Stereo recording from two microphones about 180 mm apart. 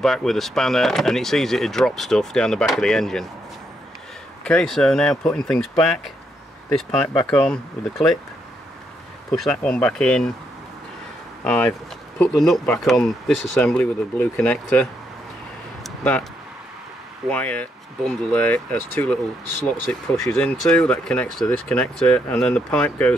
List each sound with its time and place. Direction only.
0.0 s speech: centre (ahead or behind)
4.5 s speech: 5° left (ahead or behind)
7.2 s speech: 5° left (ahead or behind)
9.3 s speech: 5° left (ahead or behind)
11.4 s speech: 10° left (ahead or behind)
15.8 s a sound: 5° left (ahead or behind)
17.3 s speech: 10° left (ahead or behind)
19.4 s speech: 70° right (ahead or behind)
19.9 s speech: 5° left (ahead or behind)